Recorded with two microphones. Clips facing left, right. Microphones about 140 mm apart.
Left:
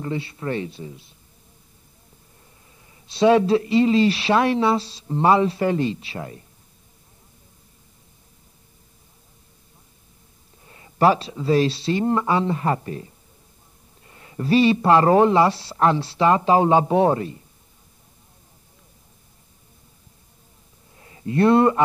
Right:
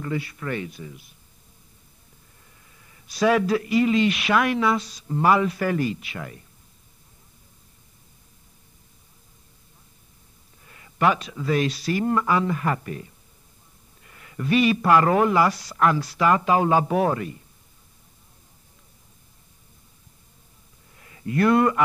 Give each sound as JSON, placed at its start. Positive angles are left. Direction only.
{"t": 0.0, "sound": "a man's voice", "side_deg": 25}
{"t": 2.9, "sound": "a man's voice", "side_deg": 25}
{"t": 10.6, "sound": "a man's voice", "side_deg": 30}
{"t": 20.9, "sound": "speech", "side_deg": 30}